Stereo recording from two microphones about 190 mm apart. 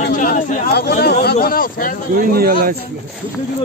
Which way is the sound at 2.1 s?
50° right (ahead or behind).